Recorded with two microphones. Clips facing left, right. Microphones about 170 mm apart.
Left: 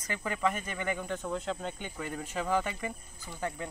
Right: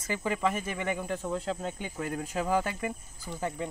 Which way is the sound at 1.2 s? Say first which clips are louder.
Right 2 dB; 35° right (ahead or behind).